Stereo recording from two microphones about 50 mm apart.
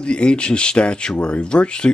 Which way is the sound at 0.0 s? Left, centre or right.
Left.